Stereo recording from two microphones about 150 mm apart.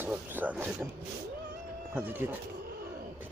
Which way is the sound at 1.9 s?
15° right (ahead or behind).